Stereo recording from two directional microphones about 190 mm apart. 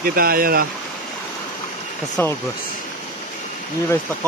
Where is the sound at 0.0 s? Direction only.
50° right (ahead or behind).